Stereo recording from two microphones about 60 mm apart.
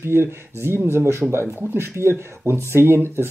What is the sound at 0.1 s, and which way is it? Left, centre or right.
Speech, right.